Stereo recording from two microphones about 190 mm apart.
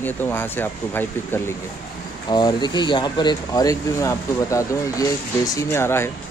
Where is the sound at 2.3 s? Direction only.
20° left (ahead or behind).